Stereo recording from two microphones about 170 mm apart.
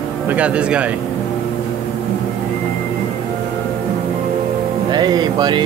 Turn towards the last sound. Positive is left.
turn(degrees=-25)  # may be behind; listen again after turning